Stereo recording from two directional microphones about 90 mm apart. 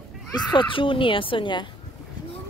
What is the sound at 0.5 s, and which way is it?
Speech, 70° left (ahead or behind).